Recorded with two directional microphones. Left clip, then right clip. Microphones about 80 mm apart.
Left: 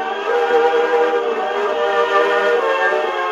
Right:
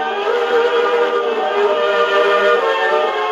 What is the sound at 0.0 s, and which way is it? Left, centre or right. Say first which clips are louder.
Music: right 1 dB; right.